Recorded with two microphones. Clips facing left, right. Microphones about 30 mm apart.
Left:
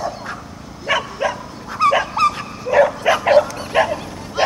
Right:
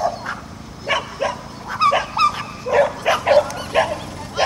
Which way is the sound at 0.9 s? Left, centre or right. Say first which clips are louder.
Left 2 dB; centre.